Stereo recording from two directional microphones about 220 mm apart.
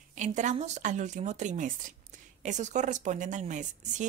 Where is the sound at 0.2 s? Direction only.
35° right (ahead or behind).